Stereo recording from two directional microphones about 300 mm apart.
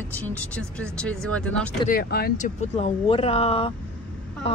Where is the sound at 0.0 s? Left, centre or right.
Centre.